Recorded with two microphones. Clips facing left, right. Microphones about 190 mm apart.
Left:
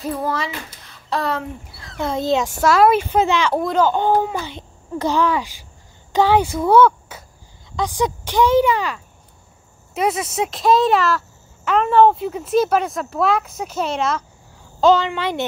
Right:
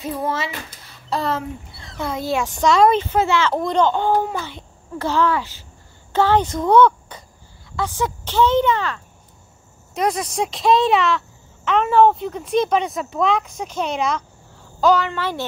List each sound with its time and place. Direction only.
1.1 s speech: centre (ahead or behind)
2.0 s a child's voice: 20° left (ahead or behind)
2.5 s speech: 5° left (ahead or behind)
3.6 s speech: 5° left (ahead or behind)
14.8 s speech: 25° left (ahead or behind)